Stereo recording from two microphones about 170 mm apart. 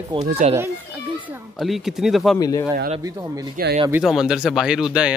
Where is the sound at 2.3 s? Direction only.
20° left (ahead or behind).